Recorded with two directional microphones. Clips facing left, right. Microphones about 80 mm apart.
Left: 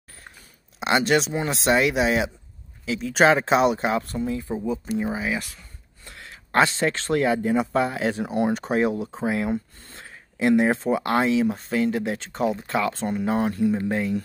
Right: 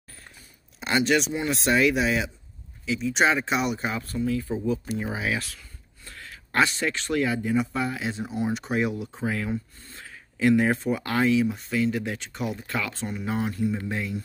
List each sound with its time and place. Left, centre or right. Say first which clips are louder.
0.8 s speech: left 2 dB; left
4.2 s speech: even; left
6.0 s a man's voice: even; left
8.1 s speech: left 5 dB; left
8.5 s speech: left 4 dB; left